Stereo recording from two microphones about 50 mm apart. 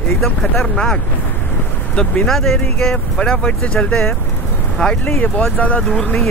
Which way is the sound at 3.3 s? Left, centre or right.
Left.